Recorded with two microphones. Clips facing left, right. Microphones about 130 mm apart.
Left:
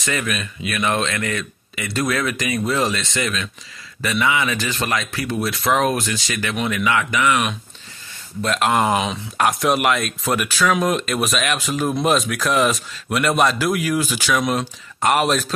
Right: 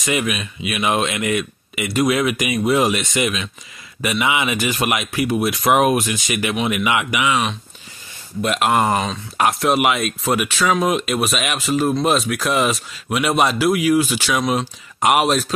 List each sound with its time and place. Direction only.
0.0 s speech: 10° right (ahead or behind)
8.4 s speech: 5° right (ahead or behind)